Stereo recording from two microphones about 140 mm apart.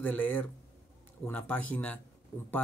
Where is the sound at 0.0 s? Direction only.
15° left (ahead or behind).